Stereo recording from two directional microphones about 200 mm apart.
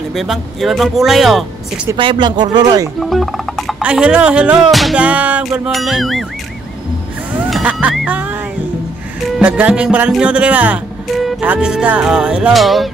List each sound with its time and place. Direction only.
0.1 s music: centre (ahead or behind)
2.0 s speech: 25° right (ahead or behind)
3.0 s music: centre (ahead or behind)
7.3 s music: 5° right (ahead or behind)
9.4 s music: 5° right (ahead or behind)